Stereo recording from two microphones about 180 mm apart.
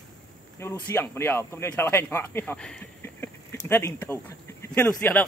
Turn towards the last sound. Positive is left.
turn(degrees=10)  # may be behind; listen again after turning